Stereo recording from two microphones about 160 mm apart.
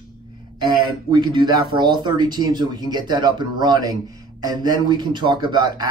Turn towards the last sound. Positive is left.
turn(degrees=-25)  # may be behind; listen again after turning